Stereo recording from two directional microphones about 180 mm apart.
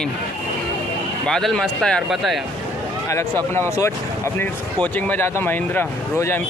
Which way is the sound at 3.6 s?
15° left (ahead or behind).